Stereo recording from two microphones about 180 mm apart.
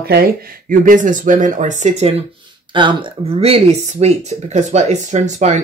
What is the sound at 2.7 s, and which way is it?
Speech, 25° right (ahead or behind).